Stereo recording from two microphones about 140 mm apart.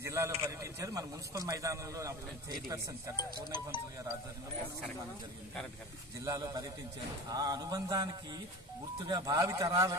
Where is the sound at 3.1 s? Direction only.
30° left (ahead or behind).